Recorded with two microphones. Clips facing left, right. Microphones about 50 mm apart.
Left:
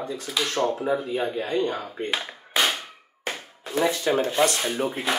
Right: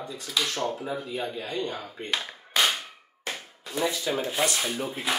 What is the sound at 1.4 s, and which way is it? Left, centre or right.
Speech, left.